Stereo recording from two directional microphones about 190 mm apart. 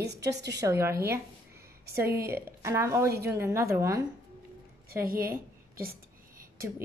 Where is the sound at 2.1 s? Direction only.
15° right (ahead or behind).